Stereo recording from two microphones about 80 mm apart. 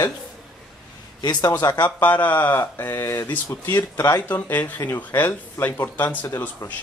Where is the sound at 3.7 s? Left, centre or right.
Left.